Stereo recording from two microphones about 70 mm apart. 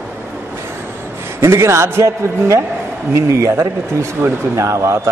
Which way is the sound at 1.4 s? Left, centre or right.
Right.